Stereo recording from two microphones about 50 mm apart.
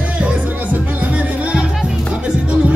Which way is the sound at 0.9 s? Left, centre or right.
Right.